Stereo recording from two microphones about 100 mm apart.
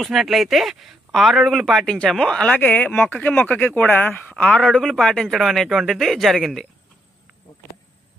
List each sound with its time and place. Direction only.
0.0 s speech: centre (ahead or behind)